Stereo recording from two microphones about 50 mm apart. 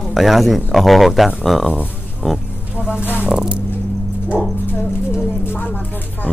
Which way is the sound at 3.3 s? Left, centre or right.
Centre.